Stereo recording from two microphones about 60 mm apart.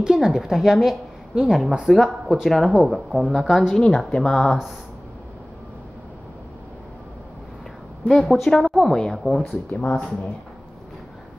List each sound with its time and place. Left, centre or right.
0.0 s a woman's voice: centre
2.5 s speech: centre
8.1 s speech: centre
9.7 s speech: left
9.9 s speech: centre